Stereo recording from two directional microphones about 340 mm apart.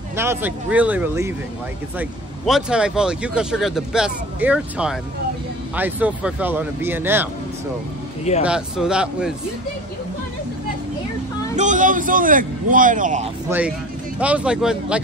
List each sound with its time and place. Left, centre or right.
0.1 s speech: centre
8.2 s speech: centre
8.5 s speech: centre
11.5 s a man's voice: right
13.5 s speech: centre